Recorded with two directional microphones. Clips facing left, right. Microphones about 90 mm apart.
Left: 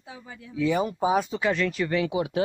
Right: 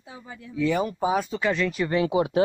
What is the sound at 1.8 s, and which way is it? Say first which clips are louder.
Speech: right 3 dB; 35° right (ahead or behind).